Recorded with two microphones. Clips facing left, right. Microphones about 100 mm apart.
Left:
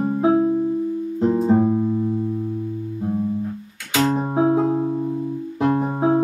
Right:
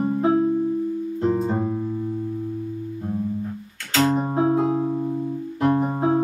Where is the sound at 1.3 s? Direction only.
10° left (ahead or behind).